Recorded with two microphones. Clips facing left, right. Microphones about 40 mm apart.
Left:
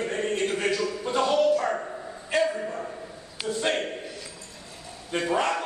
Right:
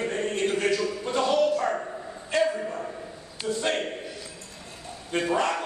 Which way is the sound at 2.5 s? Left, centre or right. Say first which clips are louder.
Even; centre.